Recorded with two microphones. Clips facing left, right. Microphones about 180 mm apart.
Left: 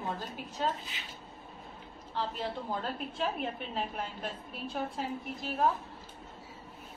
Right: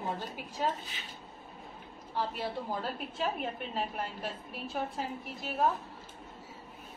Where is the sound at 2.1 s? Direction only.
10° right (ahead or behind).